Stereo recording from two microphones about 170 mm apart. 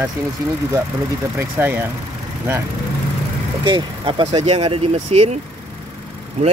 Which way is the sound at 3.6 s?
30° right (ahead or behind).